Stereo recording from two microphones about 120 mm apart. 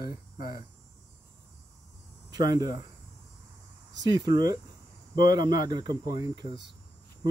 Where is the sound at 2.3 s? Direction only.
30° right (ahead or behind).